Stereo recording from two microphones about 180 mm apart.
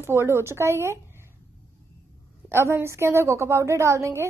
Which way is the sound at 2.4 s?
15° right (ahead or behind).